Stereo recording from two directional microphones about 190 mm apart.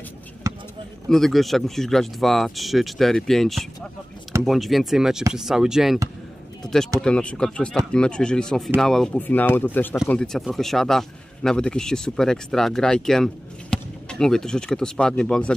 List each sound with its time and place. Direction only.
0.5 s a sound: 15° right (ahead or behind)
1.0 s a man's voice: centre (ahead or behind)
7.0 s a man's voice: 5° left (ahead or behind)